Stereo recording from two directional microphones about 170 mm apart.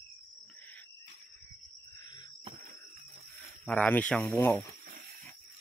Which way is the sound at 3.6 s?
10° left (ahead or behind).